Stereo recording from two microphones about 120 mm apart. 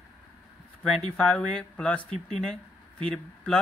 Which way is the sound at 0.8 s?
5° left (ahead or behind).